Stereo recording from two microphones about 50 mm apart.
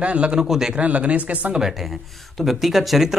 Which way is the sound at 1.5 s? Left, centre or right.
Centre.